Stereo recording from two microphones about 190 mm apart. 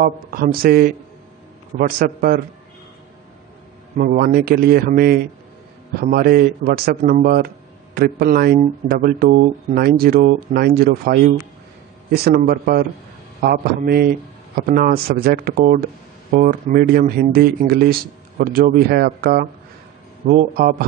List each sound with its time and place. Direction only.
0.0 s speech: 50° right (ahead or behind)
3.9 s speech: 45° right (ahead or behind)